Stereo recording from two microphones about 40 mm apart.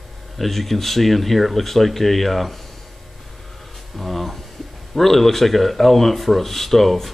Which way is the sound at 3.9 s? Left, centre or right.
Centre.